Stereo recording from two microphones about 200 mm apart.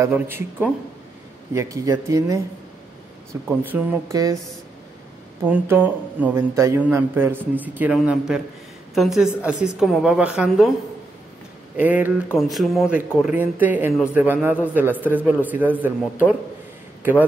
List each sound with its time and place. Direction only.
0.0 s speech: 10° right (ahead or behind)
3.4 s speech: 10° right (ahead or behind)
5.4 s a woman's voice: 10° right (ahead or behind)
11.7 s a woman's voice: 10° right (ahead or behind)
17.0 s speech: 10° right (ahead or behind)